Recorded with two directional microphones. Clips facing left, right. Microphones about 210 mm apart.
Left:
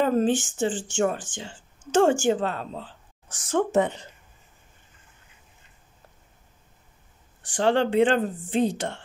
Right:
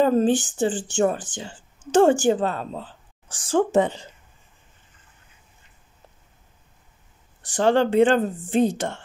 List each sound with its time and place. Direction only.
0.0 s a woman's voice: 35° right (ahead or behind)
3.3 s speech: 30° right (ahead or behind)
7.4 s speech: 40° right (ahead or behind)